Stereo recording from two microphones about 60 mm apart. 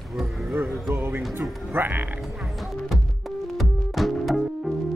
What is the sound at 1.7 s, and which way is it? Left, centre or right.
Frog, right.